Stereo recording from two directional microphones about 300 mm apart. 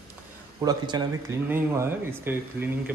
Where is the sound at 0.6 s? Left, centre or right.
Centre.